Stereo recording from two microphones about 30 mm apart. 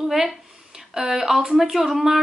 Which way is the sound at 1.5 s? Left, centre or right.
Centre.